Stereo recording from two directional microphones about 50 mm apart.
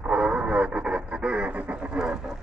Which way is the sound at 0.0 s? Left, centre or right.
Right.